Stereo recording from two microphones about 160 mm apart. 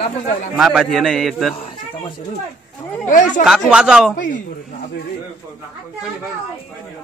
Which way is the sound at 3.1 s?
55° left (ahead or behind).